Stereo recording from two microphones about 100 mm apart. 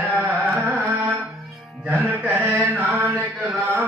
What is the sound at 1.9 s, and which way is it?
Mantra, 15° right (ahead or behind).